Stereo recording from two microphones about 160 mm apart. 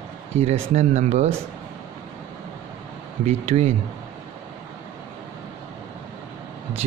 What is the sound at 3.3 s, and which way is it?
Speech, 45° right (ahead or behind).